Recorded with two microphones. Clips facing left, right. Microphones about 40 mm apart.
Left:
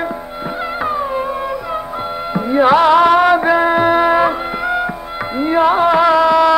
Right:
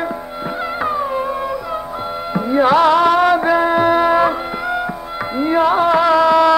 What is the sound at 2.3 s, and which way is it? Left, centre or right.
Music, left.